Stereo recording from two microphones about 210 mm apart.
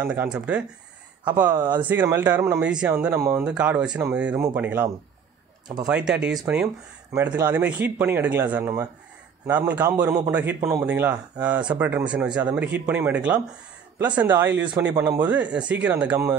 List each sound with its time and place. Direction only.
0.0 s a man's voice: 5° right (ahead or behind)
5.9 s a man's voice: 5° right (ahead or behind)